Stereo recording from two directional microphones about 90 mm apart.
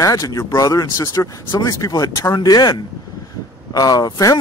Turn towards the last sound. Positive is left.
turn(degrees=40)  # may be behind; listen again after turning